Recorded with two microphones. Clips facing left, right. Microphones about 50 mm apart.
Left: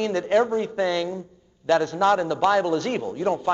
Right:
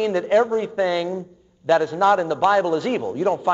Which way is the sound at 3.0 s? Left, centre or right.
Right.